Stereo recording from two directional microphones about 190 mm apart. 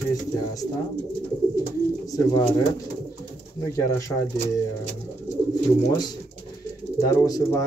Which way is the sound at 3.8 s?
15° left (ahead or behind).